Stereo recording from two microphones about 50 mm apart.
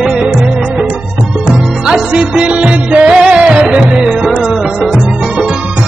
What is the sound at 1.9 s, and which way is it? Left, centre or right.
Music, centre.